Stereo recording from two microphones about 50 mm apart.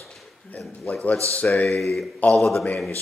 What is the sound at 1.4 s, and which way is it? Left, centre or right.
Speech, centre.